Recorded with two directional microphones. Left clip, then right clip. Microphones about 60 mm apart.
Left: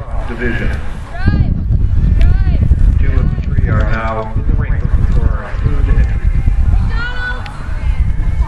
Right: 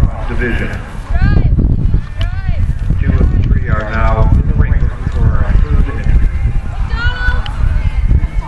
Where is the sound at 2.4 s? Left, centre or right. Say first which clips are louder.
Left 3 dB; right.